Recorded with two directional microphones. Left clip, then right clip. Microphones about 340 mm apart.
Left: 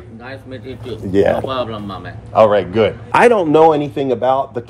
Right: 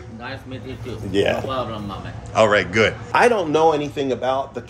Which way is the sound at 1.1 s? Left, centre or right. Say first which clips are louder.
Left 6 dB; left.